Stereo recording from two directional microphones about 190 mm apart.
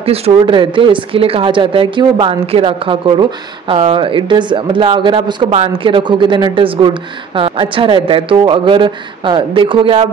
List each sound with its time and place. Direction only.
0.0 s speech: 30° right (ahead or behind)